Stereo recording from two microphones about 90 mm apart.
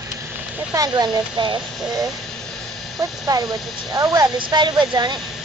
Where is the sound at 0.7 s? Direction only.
50° right (ahead or behind).